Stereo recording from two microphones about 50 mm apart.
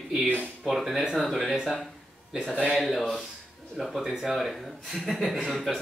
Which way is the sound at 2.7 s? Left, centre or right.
Centre.